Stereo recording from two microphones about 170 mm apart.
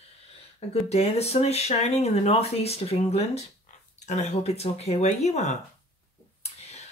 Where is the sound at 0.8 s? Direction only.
40° left (ahead or behind).